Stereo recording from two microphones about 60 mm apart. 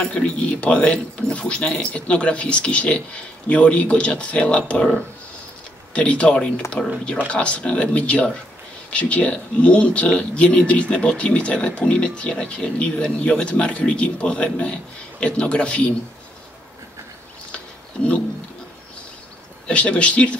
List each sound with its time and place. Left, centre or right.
0.0 s speech: centre
19.7 s speech: centre